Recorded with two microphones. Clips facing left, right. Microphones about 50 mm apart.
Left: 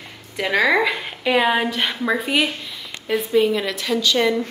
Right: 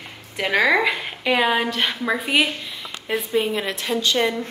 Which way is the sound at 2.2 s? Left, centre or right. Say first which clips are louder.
Right 3 dB; centre.